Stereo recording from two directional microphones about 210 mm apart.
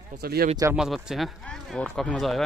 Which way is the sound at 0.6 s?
5° right (ahead or behind).